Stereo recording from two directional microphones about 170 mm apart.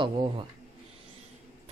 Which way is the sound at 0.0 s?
30° right (ahead or behind).